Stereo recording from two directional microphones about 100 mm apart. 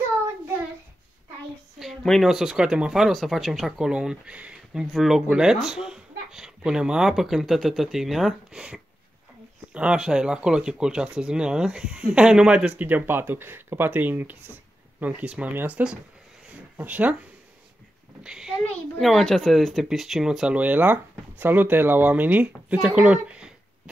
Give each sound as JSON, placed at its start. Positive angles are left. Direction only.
{"t": 1.8, "sound": "a child's voice", "side_deg": 0}
{"t": 18.2, "sound": "a child's voice", "side_deg": -5}
{"t": 18.6, "sound": "a child's voice", "side_deg": 5}